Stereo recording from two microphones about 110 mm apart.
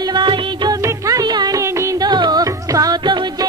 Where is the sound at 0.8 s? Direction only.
30° right (ahead or behind).